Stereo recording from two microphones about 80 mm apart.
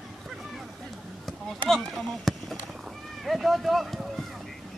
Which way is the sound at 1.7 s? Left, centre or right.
Centre.